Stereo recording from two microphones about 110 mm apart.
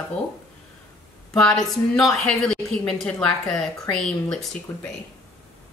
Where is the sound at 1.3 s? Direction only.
5° left (ahead or behind).